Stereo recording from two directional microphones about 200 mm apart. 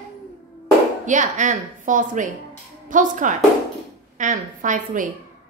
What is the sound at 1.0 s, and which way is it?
A woman's voice, 40° right (ahead or behind).